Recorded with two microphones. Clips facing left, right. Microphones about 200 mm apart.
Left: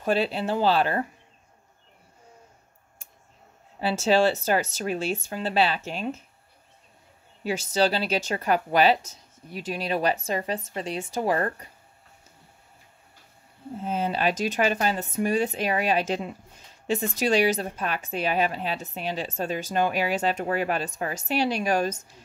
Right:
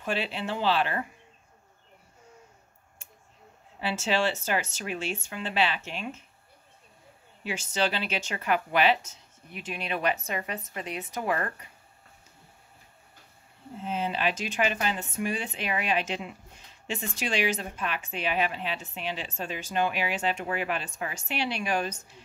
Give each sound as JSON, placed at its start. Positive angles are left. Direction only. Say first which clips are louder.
{"t": 0.0, "sound": "a woman's voice", "louder": "left 6 dB", "side_deg": 40}
{"t": 3.8, "sound": "a woman's voice", "louder": "left 6 dB", "side_deg": 35}
{"t": 7.4, "sound": "a woman's voice", "louder": "left 5 dB", "side_deg": 35}
{"t": 13.8, "sound": "a woman's voice", "louder": "left 3 dB", "side_deg": 45}